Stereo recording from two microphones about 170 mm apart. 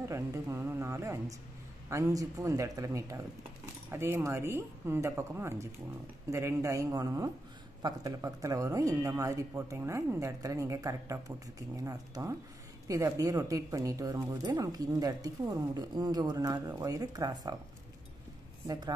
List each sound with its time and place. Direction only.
0.1 s speech: 15° right (ahead or behind)
18.7 s speech: 25° right (ahead or behind)